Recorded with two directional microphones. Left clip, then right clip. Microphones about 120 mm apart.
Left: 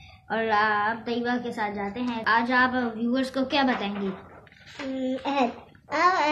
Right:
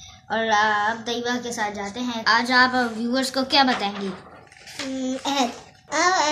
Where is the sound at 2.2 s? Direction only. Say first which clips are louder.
Right 4 dB; 35° right (ahead or behind); by 3.9 s 55° right (ahead or behind).